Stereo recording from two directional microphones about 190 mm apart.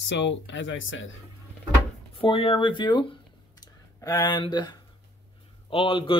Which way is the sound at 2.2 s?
30° left (ahead or behind).